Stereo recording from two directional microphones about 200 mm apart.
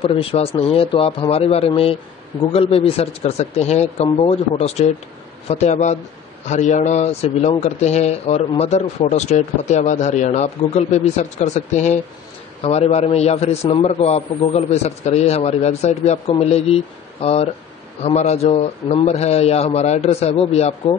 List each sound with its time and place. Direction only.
0.0 s a man's voice: 30° left (ahead or behind)